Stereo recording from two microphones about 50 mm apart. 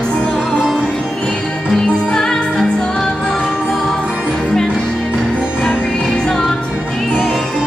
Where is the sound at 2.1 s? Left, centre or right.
Centre.